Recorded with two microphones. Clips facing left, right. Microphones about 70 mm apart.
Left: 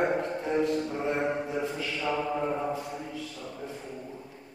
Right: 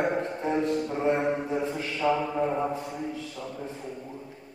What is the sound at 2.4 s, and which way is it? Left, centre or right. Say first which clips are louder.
Speech: right 3 dB; centre.